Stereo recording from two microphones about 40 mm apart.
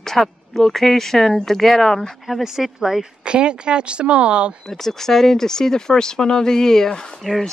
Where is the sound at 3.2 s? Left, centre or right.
Right.